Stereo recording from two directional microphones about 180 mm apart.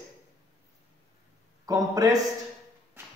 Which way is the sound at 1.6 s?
20° right (ahead or behind).